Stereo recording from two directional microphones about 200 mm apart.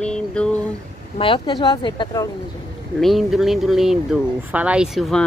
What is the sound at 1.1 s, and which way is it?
Speech, 25° left (ahead or behind).